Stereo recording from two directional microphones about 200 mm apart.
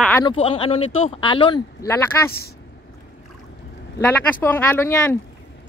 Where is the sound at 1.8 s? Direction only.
10° left (ahead or behind).